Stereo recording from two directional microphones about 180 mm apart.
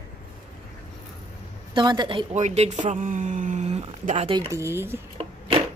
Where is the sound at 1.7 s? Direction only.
25° right (ahead or behind).